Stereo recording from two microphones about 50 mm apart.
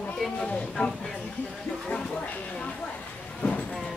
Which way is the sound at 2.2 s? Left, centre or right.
Left.